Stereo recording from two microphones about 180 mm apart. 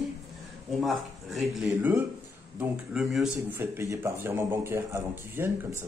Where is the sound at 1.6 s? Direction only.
10° right (ahead or behind).